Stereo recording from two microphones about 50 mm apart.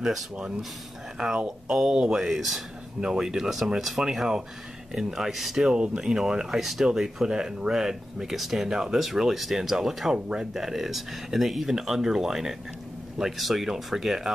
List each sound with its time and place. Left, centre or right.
0.0 s speech: centre
1.1 s speech: centre
2.2 s speech: centre
3.0 s speech: centre